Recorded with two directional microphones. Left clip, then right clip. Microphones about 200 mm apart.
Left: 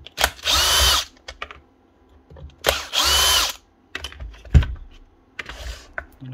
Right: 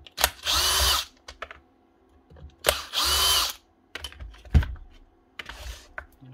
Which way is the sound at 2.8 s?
30° left (ahead or behind).